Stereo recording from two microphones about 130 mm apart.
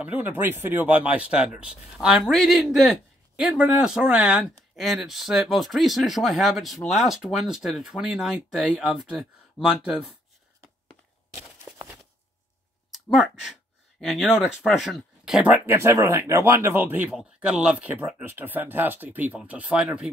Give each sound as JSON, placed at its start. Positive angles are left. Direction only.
{"t": 0.0, "sound": "speech", "side_deg": -15}
{"t": 12.9, "sound": "speech", "side_deg": 0}
{"t": 15.3, "sound": "speech", "side_deg": -15}